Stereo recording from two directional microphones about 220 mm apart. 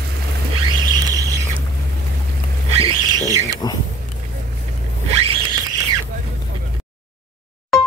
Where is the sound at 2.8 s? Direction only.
15° right (ahead or behind).